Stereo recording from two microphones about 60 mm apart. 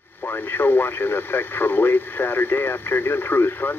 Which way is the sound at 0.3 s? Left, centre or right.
Left.